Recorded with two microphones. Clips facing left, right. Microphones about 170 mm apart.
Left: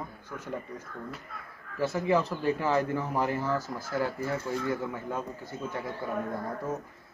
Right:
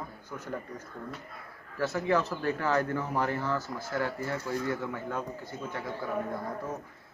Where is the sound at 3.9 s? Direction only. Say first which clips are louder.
Left 2 dB; 20° left (ahead or behind).